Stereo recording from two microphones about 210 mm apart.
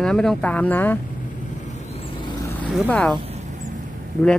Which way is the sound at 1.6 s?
30° left (ahead or behind).